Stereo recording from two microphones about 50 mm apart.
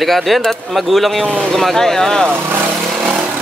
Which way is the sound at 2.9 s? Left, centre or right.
Centre.